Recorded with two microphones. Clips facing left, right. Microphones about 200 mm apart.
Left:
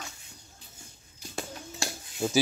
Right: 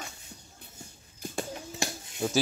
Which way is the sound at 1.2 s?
50° right (ahead or behind).